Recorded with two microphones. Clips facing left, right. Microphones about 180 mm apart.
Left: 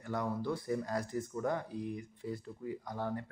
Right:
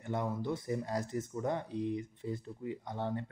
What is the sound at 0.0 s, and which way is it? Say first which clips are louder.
Speech: even; 25° right (ahead or behind).